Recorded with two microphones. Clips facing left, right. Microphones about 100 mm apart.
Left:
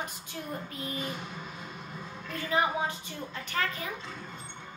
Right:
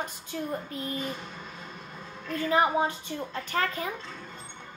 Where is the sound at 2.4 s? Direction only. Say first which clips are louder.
Right 4 dB; 35° right (ahead or behind).